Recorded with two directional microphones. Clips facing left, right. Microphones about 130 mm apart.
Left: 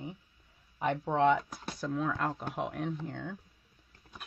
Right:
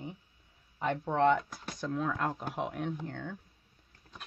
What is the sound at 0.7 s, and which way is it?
Speech, 15° left (ahead or behind).